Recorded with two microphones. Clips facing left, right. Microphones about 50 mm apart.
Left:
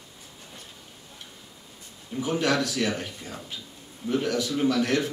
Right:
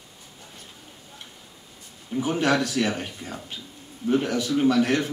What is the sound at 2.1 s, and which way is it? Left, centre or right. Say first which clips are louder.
Speech: right 2 dB; right.